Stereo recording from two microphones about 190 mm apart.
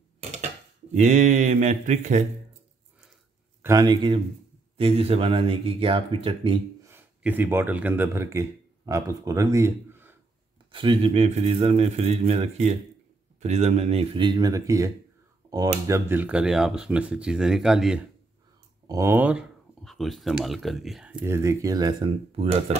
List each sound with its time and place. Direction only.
0.2 s dishes: 35° right (ahead or behind)
0.9 s speech: 40° right (ahead or behind)
3.6 s speech: 20° right (ahead or behind)
6.8 s speech: 10° right (ahead or behind)
10.7 s speech: 30° right (ahead or behind); by 18.0 s 5° right (ahead or behind)
18.9 s speech: 15° right (ahead or behind); by 22.8 s 30° right (ahead or behind)